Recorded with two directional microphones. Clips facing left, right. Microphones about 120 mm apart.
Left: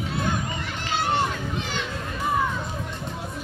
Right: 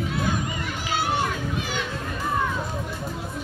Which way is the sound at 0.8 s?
5° right (ahead or behind).